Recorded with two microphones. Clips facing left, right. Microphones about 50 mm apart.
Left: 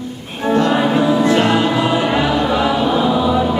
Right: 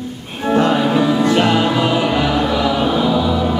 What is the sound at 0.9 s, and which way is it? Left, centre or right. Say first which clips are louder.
Music: left 1 dB; centre.